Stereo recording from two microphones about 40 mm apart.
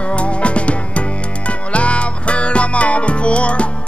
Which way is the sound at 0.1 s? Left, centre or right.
Left.